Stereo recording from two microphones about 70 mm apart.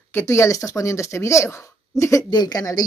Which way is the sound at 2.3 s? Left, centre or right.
Left.